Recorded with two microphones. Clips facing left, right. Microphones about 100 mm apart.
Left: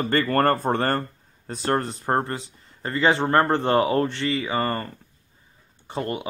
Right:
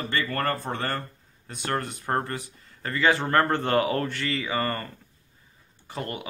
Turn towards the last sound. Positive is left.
turn(degrees=25)  # may be behind; listen again after turning